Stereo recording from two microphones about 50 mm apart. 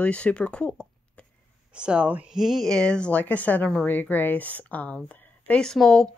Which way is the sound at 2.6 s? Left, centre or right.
Centre.